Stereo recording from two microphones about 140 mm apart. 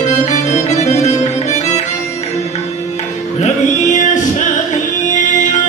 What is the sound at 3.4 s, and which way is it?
Music, 55° left (ahead or behind).